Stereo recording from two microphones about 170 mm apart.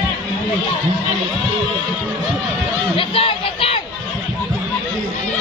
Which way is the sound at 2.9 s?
35° left (ahead or behind).